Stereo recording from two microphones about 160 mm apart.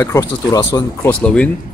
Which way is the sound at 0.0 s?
20° left (ahead or behind).